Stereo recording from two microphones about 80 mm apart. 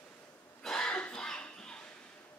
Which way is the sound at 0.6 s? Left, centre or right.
Centre.